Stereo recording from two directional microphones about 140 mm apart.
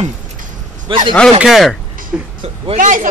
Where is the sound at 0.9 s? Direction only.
35° right (ahead or behind).